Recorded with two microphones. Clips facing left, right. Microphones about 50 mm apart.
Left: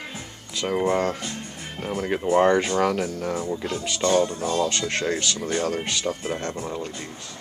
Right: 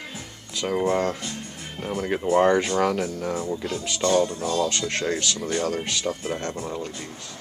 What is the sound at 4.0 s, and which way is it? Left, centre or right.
Speech, left.